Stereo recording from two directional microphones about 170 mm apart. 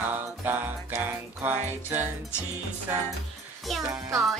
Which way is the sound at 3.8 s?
20° right (ahead or behind).